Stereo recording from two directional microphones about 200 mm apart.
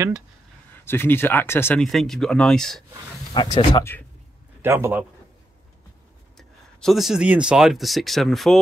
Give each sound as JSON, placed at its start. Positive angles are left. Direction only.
{"t": 0.8, "sound": "speech", "side_deg": 10}
{"t": 3.3, "sound": "speech", "side_deg": 20}
{"t": 4.6, "sound": "a man's voice", "side_deg": -10}
{"t": 6.3, "sound": "speech", "side_deg": 0}